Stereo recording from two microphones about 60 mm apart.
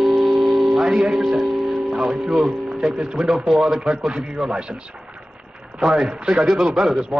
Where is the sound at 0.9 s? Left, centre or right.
Centre.